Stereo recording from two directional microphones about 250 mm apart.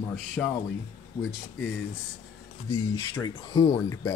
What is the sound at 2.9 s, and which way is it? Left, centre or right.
Speech, centre.